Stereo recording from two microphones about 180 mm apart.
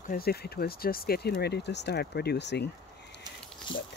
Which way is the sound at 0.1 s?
60° left (ahead or behind).